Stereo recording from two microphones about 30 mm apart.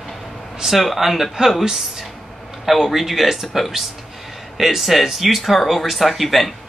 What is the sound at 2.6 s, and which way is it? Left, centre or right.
Speech, centre.